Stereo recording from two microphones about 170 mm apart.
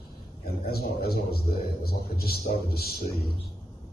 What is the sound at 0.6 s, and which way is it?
A man's voice, 65° left (ahead or behind).